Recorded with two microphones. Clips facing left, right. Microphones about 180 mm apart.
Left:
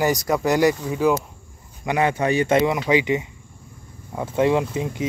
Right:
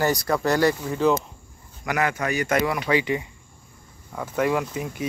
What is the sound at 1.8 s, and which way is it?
Speech, 25° left (ahead or behind).